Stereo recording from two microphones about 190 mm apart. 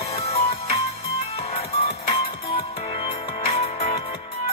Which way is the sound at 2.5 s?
30° left (ahead or behind).